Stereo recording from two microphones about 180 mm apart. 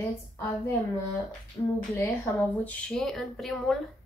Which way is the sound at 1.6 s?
20° left (ahead or behind).